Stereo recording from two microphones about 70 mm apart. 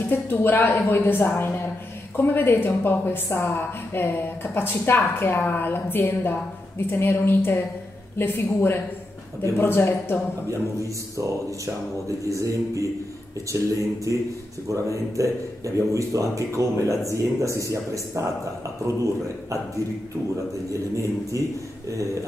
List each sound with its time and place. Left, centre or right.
0.1 s a woman's voice: left
10.8 s speech: right
20.7 s speech: right